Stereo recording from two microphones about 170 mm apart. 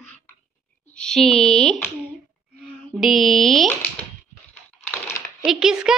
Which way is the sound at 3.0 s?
Centre (ahead or behind).